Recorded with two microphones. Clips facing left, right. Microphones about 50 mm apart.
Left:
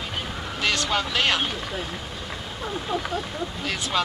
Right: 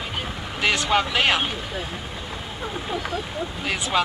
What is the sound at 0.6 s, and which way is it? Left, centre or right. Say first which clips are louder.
Speech: right 4 dB; centre.